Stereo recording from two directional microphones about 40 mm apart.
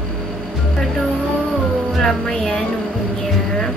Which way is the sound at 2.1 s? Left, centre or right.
Centre.